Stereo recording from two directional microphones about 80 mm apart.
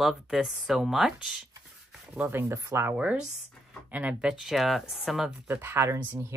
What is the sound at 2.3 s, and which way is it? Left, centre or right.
Speech, right.